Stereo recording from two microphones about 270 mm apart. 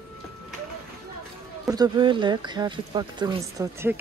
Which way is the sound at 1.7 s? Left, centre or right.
Centre.